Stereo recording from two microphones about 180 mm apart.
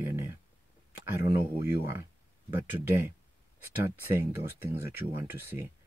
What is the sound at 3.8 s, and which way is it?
Speech, 10° right (ahead or behind).